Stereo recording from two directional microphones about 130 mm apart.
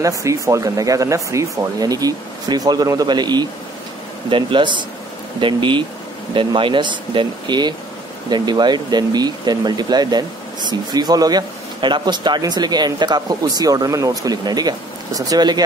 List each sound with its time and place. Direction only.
0.0 s speech: 25° right (ahead or behind)